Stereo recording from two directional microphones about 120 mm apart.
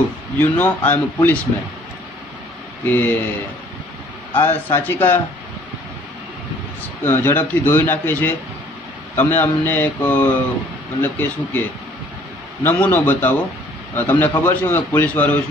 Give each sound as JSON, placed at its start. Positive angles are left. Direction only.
{"t": 0.4, "sound": "a man's voice", "side_deg": 15}
{"t": 2.8, "sound": "a man's voice", "side_deg": 15}
{"t": 4.3, "sound": "a man's voice", "side_deg": 15}
{"t": 7.0, "sound": "a man's voice", "side_deg": 20}
{"t": 12.6, "sound": "a man's voice", "side_deg": 15}